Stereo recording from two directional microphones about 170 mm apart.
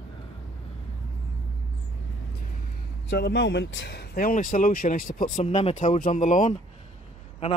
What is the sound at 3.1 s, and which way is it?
Speech, 90° left.